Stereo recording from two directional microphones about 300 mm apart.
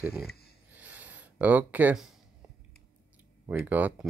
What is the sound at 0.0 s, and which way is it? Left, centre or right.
Speech, centre.